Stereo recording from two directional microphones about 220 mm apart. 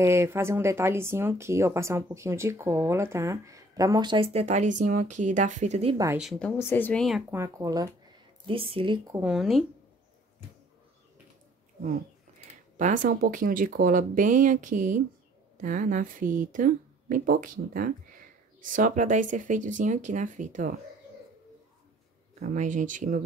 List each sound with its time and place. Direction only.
0.0 s speech: 10° right (ahead or behind)
6.0 s speech: 5° right (ahead or behind)
7.3 s speech: 15° right (ahead or behind)
9.3 s speech: centre (ahead or behind)
12.4 s speech: 35° right (ahead or behind)
22.4 s speech: 35° right (ahead or behind)